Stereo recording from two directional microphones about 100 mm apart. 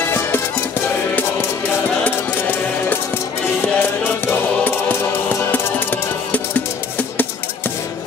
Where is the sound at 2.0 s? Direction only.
15° left (ahead or behind).